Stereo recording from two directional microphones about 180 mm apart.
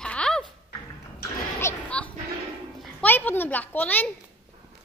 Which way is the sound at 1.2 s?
15° left (ahead or behind).